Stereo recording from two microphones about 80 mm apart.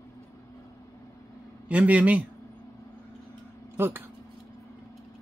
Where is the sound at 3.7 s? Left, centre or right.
Right.